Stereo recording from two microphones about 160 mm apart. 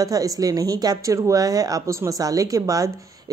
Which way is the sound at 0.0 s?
20° right (ahead or behind).